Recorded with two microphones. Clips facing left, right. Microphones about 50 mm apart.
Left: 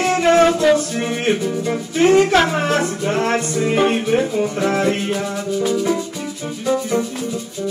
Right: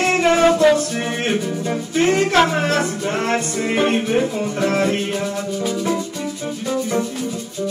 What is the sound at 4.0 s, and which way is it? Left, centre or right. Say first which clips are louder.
Speech: left 2 dB; centre.